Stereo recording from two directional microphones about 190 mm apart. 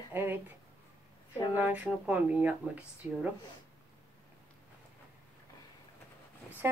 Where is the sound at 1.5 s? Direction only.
10° right (ahead or behind).